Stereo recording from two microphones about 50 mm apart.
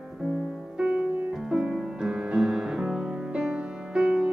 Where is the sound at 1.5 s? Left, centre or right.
Centre.